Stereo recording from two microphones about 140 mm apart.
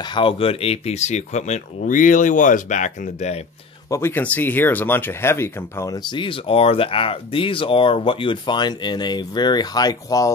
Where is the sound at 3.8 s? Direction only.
20° left (ahead or behind).